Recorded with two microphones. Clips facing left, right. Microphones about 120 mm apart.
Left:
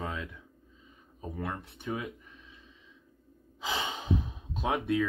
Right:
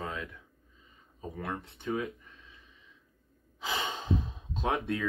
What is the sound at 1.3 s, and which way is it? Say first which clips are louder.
Speech: left 1 dB; 5° left (ahead or behind).